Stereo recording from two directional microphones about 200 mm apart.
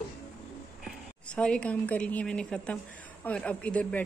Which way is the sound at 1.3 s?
5° left (ahead or behind).